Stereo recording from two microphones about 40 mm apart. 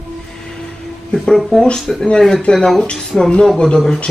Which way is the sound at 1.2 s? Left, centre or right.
Centre.